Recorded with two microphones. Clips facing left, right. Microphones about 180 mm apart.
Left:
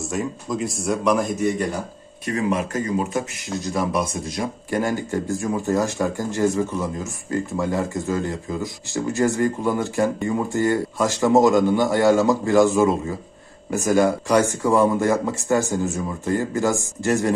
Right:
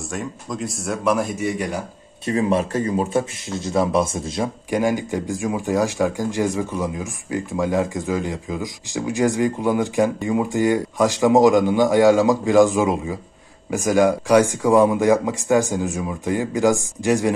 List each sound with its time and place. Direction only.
0.1 s a man's voice: centre (ahead or behind)
2.2 s speech: 30° right (ahead or behind)
4.6 s speech: 15° right (ahead or behind)